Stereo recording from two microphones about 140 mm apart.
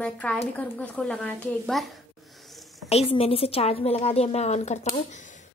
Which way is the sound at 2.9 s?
45° left (ahead or behind).